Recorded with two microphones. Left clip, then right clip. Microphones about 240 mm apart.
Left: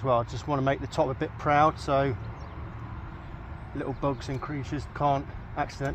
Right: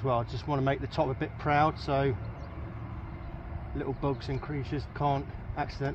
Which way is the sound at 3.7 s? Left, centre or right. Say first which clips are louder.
Left 3 dB; centre.